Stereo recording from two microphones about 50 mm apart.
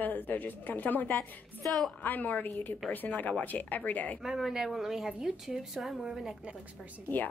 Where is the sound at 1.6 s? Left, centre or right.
Centre.